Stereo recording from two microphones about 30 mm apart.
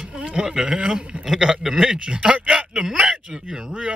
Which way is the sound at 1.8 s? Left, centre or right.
Right.